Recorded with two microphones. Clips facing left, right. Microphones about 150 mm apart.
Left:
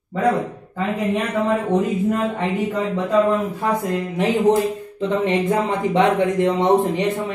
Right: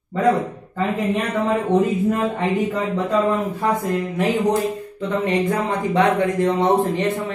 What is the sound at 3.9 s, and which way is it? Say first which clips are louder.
Speech: even; 20° left (ahead or behind).